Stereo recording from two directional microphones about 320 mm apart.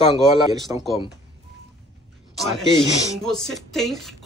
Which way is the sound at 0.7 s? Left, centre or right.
Centre.